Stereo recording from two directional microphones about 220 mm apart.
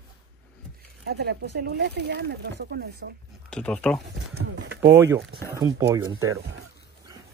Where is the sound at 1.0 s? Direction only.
45° right (ahead or behind).